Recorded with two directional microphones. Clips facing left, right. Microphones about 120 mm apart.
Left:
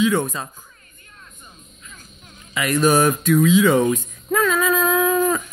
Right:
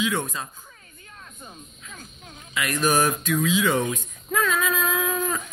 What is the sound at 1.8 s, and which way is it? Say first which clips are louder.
Music: right 2 dB; 75° right (ahead or behind).